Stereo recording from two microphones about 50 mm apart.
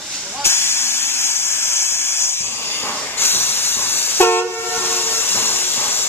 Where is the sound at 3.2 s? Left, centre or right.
Left.